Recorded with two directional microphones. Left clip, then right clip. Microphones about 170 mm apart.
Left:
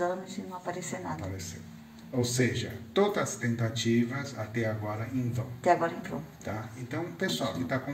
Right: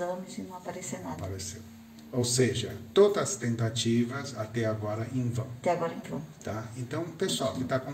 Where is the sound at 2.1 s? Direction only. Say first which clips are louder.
Right 2 dB; 10° right (ahead or behind).